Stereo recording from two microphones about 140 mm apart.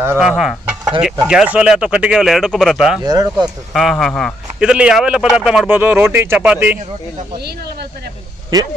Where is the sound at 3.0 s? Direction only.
25° right (ahead or behind).